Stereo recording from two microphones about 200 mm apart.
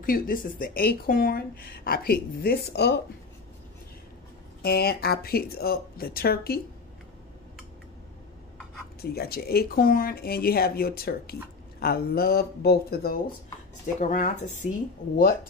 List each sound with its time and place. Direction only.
0.0 s speech: 45° left (ahead or behind)
4.6 s speech: 50° left (ahead or behind)
9.0 s speech: 50° left (ahead or behind)
13.9 s speech: 40° left (ahead or behind)